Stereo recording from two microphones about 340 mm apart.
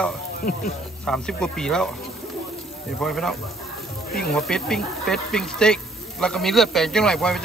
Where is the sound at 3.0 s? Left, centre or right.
Centre.